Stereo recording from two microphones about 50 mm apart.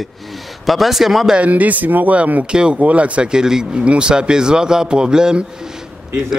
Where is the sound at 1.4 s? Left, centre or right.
Right.